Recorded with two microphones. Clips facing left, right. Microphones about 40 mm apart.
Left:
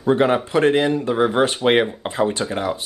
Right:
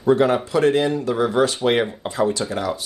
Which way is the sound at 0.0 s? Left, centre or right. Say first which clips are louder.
Even; left.